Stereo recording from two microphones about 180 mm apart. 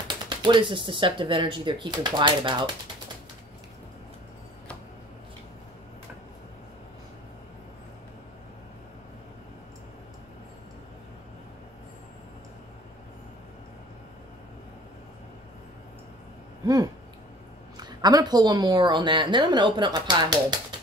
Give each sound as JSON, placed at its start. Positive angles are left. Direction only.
{"t": 0.1, "sound": "a woman's voice", "side_deg": -25}
{"t": 16.6, "sound": "a sound", "side_deg": -20}
{"t": 17.7, "sound": "a woman's voice", "side_deg": -25}